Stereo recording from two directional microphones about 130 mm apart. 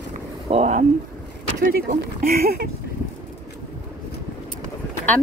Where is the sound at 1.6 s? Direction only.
90° right.